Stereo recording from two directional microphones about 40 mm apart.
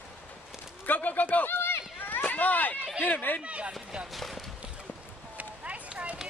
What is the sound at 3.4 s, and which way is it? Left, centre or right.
Speech, right.